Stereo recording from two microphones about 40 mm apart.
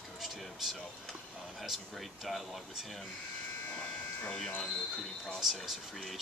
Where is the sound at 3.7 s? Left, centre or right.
Left.